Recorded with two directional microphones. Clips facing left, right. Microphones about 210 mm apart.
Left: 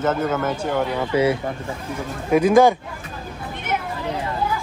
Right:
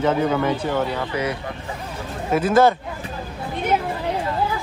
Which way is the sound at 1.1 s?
25° left (ahead or behind).